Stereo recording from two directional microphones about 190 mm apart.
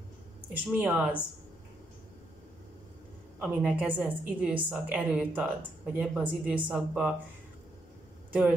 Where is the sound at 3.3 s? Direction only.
5° right (ahead or behind).